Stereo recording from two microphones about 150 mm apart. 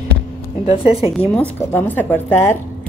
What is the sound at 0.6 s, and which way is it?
Speech, 40° left (ahead or behind).